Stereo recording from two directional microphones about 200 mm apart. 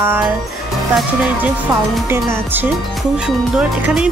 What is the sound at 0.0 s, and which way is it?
Speech, 10° right (ahead or behind).